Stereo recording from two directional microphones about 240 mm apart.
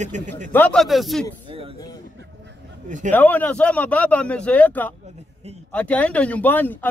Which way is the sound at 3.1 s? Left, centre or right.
Centre.